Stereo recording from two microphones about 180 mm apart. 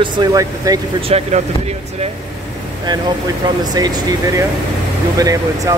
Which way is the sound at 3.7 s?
20° right (ahead or behind).